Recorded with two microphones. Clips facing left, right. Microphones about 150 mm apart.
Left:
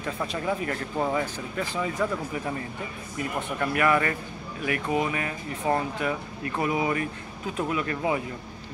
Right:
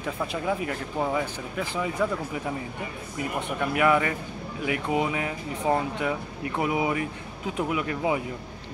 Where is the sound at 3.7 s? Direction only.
15° right (ahead or behind).